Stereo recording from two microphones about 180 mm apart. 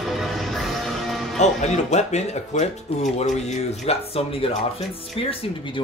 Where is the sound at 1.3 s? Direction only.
40° left (ahead or behind).